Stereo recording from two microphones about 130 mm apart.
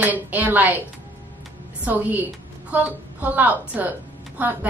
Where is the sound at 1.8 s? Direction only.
15° right (ahead or behind).